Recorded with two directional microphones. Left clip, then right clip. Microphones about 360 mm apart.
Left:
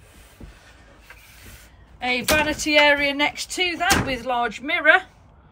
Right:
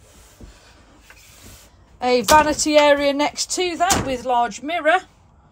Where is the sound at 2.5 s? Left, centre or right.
Centre.